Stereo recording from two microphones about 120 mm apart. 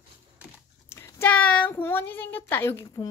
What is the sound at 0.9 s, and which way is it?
Speech, 20° left (ahead or behind).